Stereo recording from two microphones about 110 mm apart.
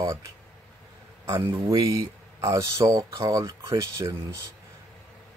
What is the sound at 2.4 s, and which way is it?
Speech, 30° right (ahead or behind).